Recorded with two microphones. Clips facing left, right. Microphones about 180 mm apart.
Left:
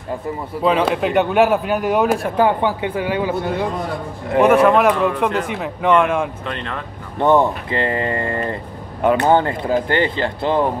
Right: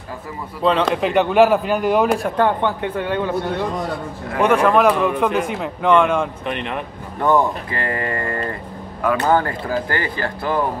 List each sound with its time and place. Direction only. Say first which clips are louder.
0.6 s speech: even; 5° left (ahead or behind)
6.4 s speech: right 2 dB; 20° right (ahead or behind)
7.2 s speech: left 2 dB; 20° left (ahead or behind)